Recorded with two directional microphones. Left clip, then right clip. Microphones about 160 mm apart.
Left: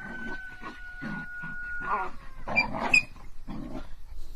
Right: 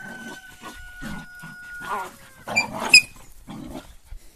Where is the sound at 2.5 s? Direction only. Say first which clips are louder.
Right 3 dB; 25° right (ahead or behind).